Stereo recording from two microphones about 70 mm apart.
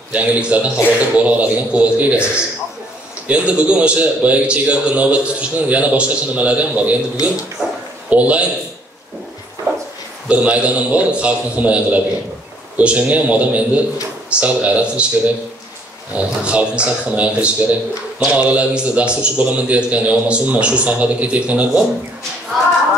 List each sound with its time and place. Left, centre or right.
0.1 s a man's voice: centre
10.2 s a man's voice: centre